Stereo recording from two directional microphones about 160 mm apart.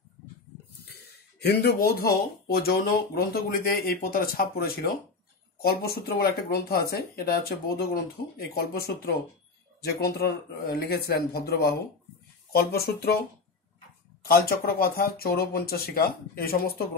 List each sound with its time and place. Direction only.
0.8 s speech: 90° left
14.2 s speech: 70° left (ahead or behind)